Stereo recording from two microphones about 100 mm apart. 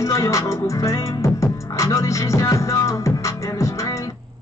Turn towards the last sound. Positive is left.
turn(degrees=30)  # may be behind; listen again after turning